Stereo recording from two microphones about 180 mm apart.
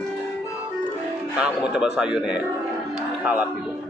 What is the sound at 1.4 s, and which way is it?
A man's voice, 5° right (ahead or behind).